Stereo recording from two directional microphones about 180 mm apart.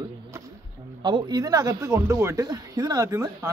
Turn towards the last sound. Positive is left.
turn(degrees=-15)  # may be behind; listen again after turning